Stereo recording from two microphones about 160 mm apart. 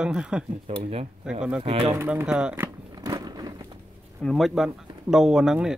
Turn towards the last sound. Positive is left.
turn(degrees=-5)  # may be behind; listen again after turning